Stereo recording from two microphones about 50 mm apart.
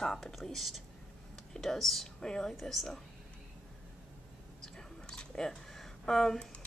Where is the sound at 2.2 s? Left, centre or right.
Centre.